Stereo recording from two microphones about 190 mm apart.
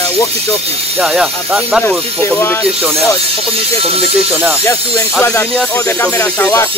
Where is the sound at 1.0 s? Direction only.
5° right (ahead or behind).